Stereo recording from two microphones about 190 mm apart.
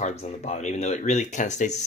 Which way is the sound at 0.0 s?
40° left (ahead or behind).